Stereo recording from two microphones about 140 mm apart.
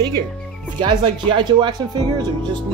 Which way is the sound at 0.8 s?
35° right (ahead or behind).